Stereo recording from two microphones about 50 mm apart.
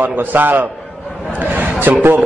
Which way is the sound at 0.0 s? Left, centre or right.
Right.